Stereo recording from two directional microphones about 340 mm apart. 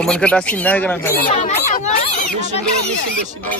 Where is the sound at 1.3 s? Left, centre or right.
Centre.